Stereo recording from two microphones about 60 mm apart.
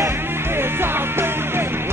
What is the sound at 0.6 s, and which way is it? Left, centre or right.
Music, right.